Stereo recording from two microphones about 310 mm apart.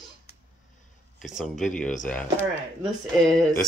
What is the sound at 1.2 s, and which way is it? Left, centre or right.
Speech, centre.